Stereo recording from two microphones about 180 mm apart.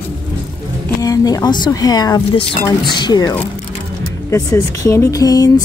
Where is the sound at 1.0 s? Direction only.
20° left (ahead or behind).